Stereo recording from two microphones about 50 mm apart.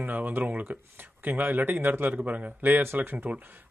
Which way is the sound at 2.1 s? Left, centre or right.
Right.